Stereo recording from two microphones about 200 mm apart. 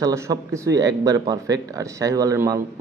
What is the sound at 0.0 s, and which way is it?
Speech, 15° right (ahead or behind).